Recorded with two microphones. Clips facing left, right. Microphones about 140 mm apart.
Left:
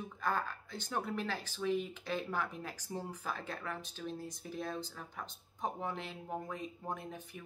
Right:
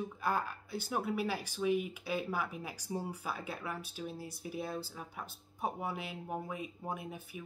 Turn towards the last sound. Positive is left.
turn(degrees=-10)  # may be behind; listen again after turning